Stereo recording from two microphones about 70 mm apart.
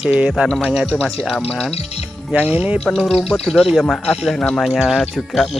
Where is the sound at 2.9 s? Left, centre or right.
Centre.